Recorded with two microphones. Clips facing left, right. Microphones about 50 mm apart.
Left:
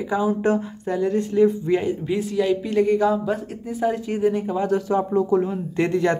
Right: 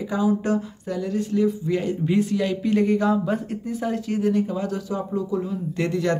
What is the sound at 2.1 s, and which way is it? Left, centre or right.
Speech, centre.